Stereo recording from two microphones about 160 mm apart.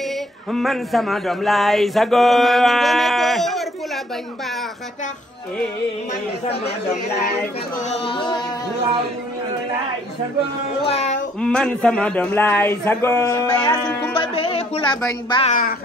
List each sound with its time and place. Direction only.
0.5 s speech: centre (ahead or behind)
7.9 s music: 35° left (ahead or behind)
10.9 s a sound: 45° left (ahead or behind)
11.4 s a man's voice: 5° left (ahead or behind); by 13.7 s 25° left (ahead or behind)
14.2 s music: 35° left (ahead or behind)
15.4 s speech: 55° left (ahead or behind)